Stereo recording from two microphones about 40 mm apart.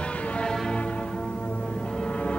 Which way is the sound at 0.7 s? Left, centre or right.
Left.